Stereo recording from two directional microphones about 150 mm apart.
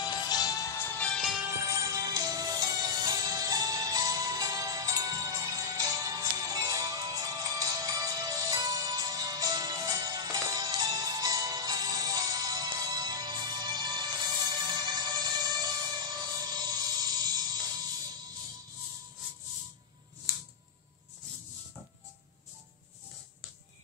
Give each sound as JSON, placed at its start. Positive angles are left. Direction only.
{"t": 0.0, "sound": "music", "side_deg": 30}
{"t": 1.4, "sound": "music", "side_deg": -20}